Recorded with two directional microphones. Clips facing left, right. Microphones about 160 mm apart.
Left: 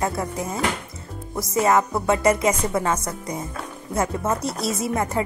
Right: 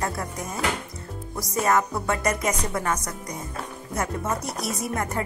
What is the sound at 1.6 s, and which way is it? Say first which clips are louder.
Speech: left 3 dB; 20° left (ahead or behind).